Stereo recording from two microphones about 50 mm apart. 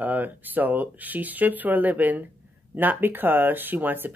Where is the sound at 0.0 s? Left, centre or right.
Right.